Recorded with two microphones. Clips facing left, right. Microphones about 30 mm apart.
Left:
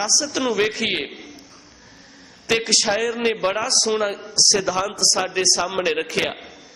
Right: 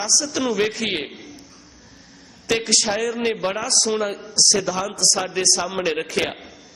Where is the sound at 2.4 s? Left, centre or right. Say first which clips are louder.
Left 1 dB; centre.